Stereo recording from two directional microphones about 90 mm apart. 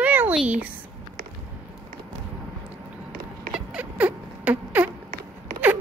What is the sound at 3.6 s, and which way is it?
Rodents, 15° right (ahead or behind).